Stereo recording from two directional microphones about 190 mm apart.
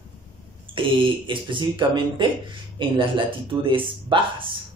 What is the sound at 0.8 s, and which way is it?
Speech, 25° right (ahead or behind).